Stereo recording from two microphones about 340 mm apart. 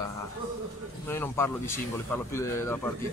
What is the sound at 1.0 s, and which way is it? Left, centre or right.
Speech, centre.